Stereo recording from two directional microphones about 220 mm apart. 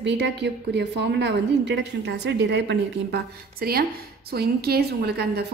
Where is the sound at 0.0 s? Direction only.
50° right (ahead or behind).